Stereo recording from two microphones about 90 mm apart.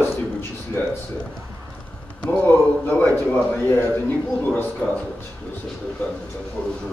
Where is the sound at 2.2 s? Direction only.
20° left (ahead or behind).